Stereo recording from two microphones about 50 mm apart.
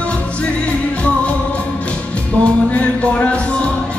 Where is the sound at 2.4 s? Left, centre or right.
Left.